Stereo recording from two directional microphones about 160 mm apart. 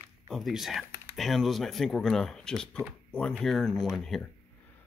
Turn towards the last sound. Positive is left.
turn(degrees=0)  # may be behind; listen again after turning